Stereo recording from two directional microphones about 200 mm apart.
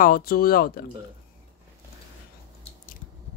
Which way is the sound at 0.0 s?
45° left (ahead or behind).